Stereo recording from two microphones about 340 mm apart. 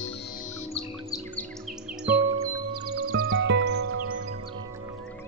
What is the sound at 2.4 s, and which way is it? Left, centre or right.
Music, right.